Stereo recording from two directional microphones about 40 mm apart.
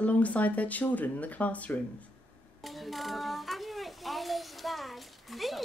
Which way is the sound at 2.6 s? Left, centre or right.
Centre.